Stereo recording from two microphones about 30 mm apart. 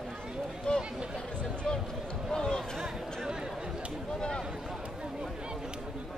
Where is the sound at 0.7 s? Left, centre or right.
Left.